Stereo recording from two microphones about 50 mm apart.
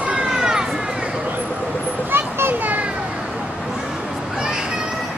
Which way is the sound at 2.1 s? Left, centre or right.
Right.